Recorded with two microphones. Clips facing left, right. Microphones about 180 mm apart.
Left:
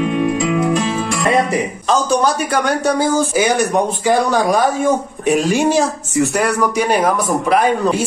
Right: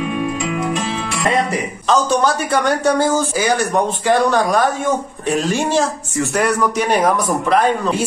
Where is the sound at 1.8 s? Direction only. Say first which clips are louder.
Right 1 dB; centre (ahead or behind).